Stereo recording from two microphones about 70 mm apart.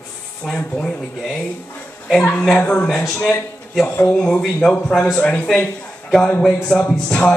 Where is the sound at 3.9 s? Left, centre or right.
Left.